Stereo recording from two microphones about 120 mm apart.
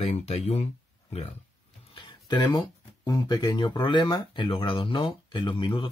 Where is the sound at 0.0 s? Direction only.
60° left (ahead or behind).